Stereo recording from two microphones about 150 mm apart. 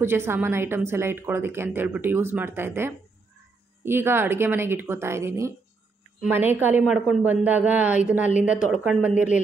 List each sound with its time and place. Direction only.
0.0 s a woman's voice: 15° right (ahead or behind)